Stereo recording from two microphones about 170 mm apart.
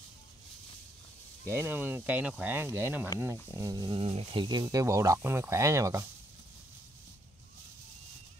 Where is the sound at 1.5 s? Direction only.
15° right (ahead or behind).